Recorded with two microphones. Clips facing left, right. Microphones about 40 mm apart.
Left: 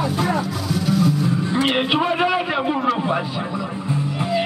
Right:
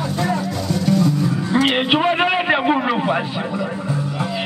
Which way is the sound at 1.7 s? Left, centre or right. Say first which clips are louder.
Right 2 dB; right.